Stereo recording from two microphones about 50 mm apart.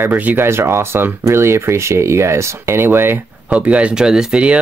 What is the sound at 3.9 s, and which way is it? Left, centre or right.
Speech, centre.